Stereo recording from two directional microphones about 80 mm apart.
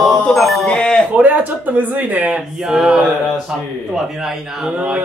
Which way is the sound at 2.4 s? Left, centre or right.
Centre.